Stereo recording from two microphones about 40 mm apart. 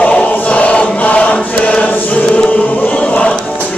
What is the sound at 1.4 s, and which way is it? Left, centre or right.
Choir, left.